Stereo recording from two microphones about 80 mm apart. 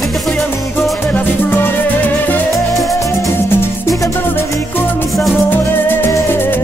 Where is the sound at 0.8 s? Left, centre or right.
Left.